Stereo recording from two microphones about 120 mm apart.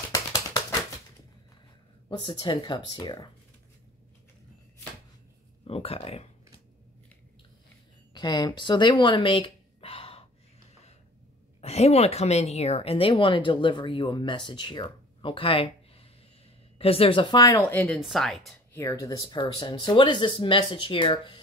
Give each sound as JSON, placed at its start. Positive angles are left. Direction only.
{"t": 0.1, "sound": "a sound", "side_deg": 25}
{"t": 2.0, "sound": "speech", "side_deg": 45}
{"t": 5.7, "sound": "speech", "side_deg": 55}
{"t": 8.1, "sound": "speech", "side_deg": 40}
{"t": 11.6, "sound": "speech", "side_deg": 60}
{"t": 17.5, "sound": "speech", "side_deg": 15}
{"t": 18.0, "sound": "a woman's voice", "side_deg": 0}
{"t": 18.7, "sound": "speech", "side_deg": 25}
{"t": 19.2, "sound": "speech", "side_deg": 40}